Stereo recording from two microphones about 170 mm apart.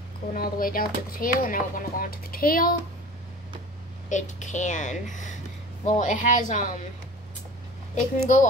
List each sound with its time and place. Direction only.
0.3 s speech: 55° left (ahead or behind)
4.1 s speech: 45° left (ahead or behind)
7.9 s speech: 50° left (ahead or behind)